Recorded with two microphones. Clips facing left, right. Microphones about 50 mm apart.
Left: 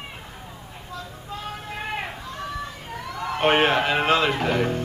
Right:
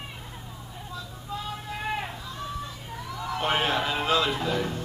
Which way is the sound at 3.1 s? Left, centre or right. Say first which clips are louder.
Left 7 dB; left.